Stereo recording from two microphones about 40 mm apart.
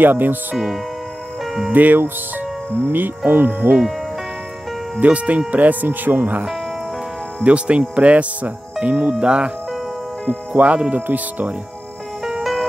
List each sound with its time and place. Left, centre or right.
0.0 s speech: right
1.7 s speech: right
3.3 s speech: right
5.0 s speech: right
5.5 s speech: right
7.4 s speech: right
10.2 s speech: right
11.0 s speech: right